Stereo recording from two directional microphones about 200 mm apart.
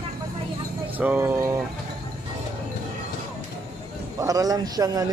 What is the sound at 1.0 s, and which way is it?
Speech, 10° right (ahead or behind).